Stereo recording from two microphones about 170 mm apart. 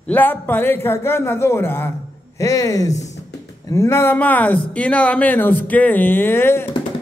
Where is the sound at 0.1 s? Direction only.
10° left (ahead or behind).